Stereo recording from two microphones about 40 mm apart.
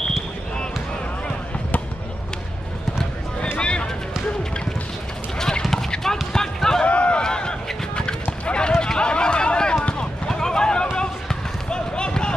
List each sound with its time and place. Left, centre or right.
3.5 s a sound: left
5.4 s clip-clop: centre
6.3 s run: centre
6.9 s a sound: left
7.2 s run: left
9.8 s basketball bounce: left